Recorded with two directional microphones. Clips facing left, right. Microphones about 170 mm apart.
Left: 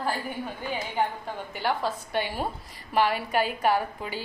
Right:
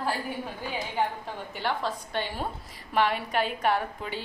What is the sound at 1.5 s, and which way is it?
A woman's voice, 5° left (ahead or behind).